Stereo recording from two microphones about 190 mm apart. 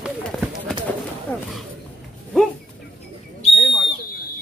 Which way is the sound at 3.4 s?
30° left (ahead or behind).